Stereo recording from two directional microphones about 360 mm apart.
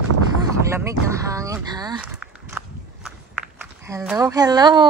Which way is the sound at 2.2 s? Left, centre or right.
Centre.